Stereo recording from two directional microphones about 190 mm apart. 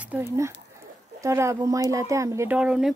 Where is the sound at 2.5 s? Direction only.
5° right (ahead or behind).